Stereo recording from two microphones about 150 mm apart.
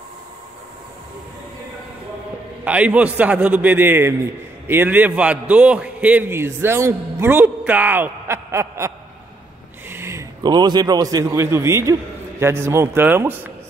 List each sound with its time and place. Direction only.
2.6 s a man's voice: 10° right (ahead or behind)
9.8 s a sound: 15° right (ahead or behind)
10.4 s a man's voice: 30° right (ahead or behind)